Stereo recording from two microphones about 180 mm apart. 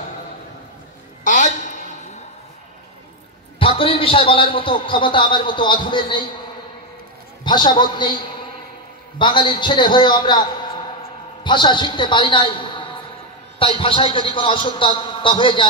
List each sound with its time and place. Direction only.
1.2 s a sound: 45° left (ahead or behind)
3.5 s a man's voice: 30° left (ahead or behind)
7.4 s a man's voice: 25° left (ahead or behind)
9.2 s a man's voice: 25° left (ahead or behind)